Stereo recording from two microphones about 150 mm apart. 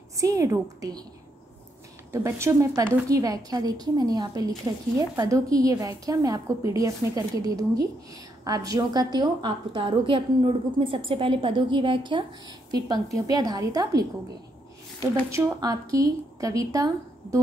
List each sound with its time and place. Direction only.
0.1 s a woman's voice: 25° right (ahead or behind)
2.1 s a woman's voice: 20° right (ahead or behind)
15.3 s a woman's voice: 20° right (ahead or behind)